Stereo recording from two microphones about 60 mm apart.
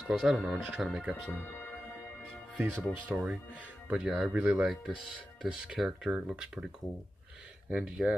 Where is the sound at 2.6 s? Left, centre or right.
Right.